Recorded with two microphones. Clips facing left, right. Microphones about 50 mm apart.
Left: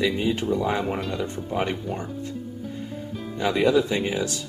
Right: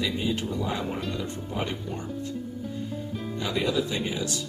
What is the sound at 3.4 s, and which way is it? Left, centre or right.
Speech, left.